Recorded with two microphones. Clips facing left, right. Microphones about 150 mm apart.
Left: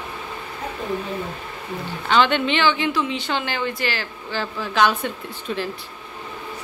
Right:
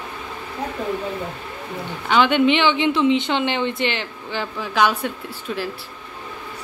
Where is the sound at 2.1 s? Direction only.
15° right (ahead or behind).